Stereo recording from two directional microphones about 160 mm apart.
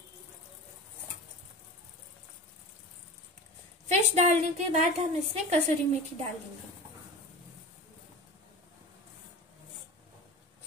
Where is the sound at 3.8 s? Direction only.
45° right (ahead or behind).